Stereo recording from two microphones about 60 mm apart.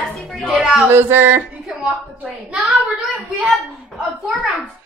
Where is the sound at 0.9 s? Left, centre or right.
Right.